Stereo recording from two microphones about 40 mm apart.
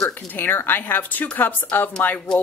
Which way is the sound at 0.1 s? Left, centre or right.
Left.